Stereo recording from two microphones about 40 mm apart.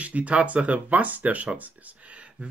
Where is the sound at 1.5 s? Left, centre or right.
Right.